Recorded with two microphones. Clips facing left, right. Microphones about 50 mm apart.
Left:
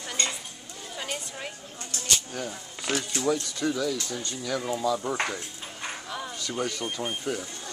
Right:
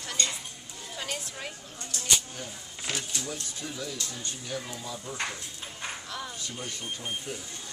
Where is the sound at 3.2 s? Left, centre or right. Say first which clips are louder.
Left 11 dB; left.